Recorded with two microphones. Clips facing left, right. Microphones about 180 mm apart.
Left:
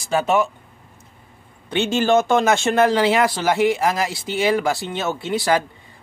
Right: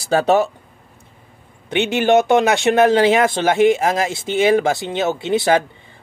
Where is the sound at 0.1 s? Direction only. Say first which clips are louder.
Right 4 dB; 35° right (ahead or behind).